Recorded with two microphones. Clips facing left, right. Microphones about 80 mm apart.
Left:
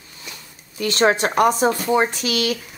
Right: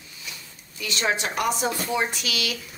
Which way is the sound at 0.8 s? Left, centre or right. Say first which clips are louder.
Left 9 dB; left.